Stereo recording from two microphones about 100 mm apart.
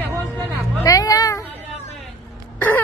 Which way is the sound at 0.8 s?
35° left (ahead or behind).